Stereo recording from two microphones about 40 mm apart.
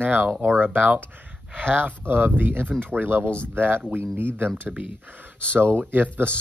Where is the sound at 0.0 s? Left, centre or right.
Right.